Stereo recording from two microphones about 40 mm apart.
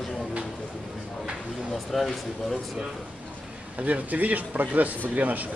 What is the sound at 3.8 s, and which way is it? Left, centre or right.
Speech, right.